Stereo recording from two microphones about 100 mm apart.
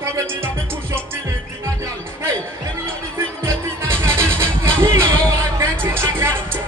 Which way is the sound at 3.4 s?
25° right (ahead or behind).